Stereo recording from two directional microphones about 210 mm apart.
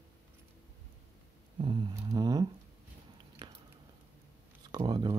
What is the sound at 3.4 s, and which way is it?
Squish, 20° right (ahead or behind).